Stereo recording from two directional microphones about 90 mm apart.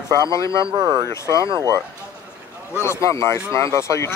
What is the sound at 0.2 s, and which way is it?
Speech, 35° left (ahead or behind).